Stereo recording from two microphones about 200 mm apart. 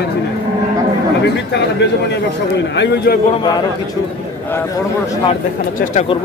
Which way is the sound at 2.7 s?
60° left (ahead or behind).